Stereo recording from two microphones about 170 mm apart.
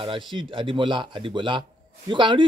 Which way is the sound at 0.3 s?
30° right (ahead or behind).